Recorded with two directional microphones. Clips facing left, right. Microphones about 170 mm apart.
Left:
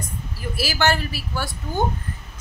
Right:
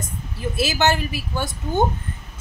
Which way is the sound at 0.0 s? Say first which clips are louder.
Right 3 dB; 20° right (ahead or behind).